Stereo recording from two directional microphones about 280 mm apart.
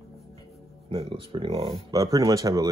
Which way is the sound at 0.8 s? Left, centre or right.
Centre.